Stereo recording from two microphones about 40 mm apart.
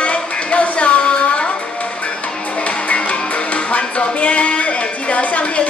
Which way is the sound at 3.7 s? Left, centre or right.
Left.